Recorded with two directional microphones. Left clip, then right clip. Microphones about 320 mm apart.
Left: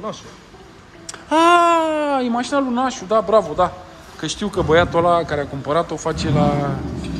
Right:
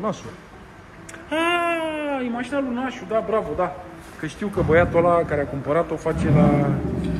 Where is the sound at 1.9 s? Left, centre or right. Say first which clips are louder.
Left 7 dB; centre.